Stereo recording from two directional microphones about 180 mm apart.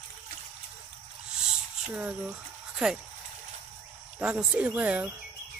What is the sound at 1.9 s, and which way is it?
Speech, 5° right (ahead or behind).